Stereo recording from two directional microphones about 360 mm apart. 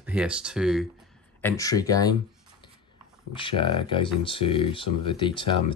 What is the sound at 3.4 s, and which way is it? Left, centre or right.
Speech, centre.